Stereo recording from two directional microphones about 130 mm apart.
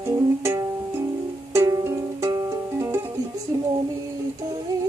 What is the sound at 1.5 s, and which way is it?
Music, 20° right (ahead or behind).